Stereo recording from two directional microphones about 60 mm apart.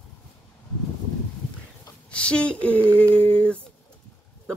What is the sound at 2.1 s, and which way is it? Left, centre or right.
Speech, centre.